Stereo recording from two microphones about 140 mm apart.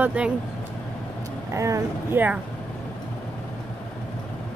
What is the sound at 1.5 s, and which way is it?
Speech, 20° right (ahead or behind).